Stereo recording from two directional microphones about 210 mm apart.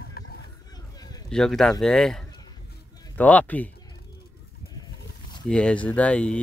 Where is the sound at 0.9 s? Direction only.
20° left (ahead or behind).